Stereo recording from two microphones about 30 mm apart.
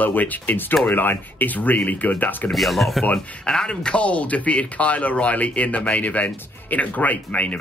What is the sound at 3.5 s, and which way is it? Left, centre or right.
Speech, left.